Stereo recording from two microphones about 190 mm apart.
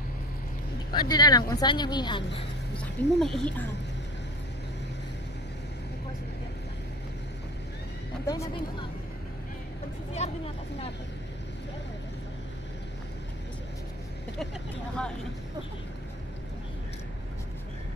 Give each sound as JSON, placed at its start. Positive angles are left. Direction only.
{"t": 0.9, "sound": "speech", "side_deg": 20}
{"t": 2.8, "sound": "speech", "side_deg": 0}
{"t": 8.3, "sound": "speech", "side_deg": 20}
{"t": 10.1, "sound": "speech", "side_deg": 35}